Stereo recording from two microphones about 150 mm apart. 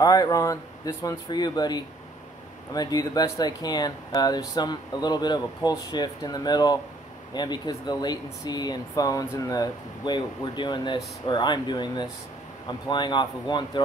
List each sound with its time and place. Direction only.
0.0 s speech: 25° left (ahead or behind)